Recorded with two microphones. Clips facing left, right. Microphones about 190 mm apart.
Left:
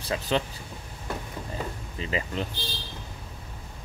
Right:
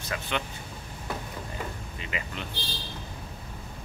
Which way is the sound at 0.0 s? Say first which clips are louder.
Left 5 dB; 35° left (ahead or behind).